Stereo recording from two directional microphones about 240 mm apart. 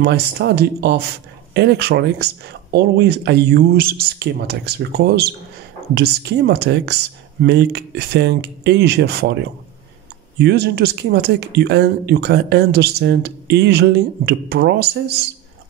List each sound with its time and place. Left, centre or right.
0.0 s speech: right